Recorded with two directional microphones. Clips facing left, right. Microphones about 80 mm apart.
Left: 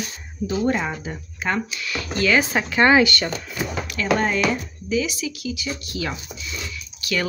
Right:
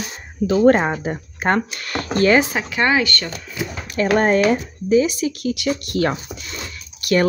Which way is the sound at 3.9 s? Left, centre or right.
Right.